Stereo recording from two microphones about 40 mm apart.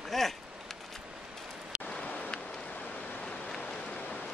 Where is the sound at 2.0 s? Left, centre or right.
Left.